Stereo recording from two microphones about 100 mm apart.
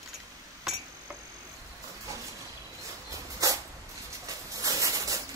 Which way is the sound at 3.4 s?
35° right (ahead or behind).